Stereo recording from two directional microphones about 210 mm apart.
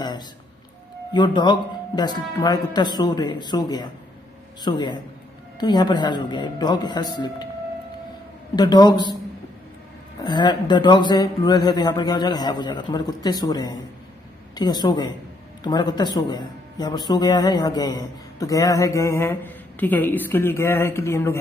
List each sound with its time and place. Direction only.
1.1 s speech: 20° left (ahead or behind)
8.5 s speech: 20° left (ahead or behind)
10.2 s a man's voice: 20° left (ahead or behind)